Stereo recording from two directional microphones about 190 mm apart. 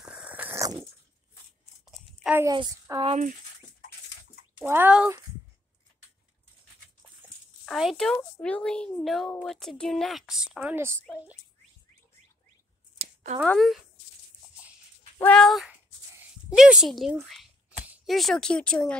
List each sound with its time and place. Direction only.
0.0 s a sound: 5° right (ahead or behind)
1.9 s a sound: 5° right (ahead or behind)
2.4 s a woman's voice: 20° right (ahead or behind)
3.1 s speech: 40° right (ahead or behind)
4.6 s speech: 10° right (ahead or behind)
7.6 s speech: centre (ahead or behind)
13.5 s speech: centre (ahead or behind)
15.1 s speech: 5° left (ahead or behind)